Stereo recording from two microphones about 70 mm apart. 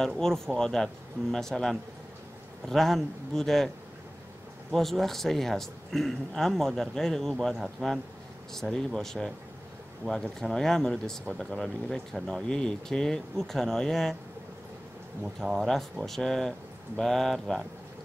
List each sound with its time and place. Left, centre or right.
0.2 s speech: centre
4.7 s speech: centre
15.2 s speech: centre
16.1 s speech: centre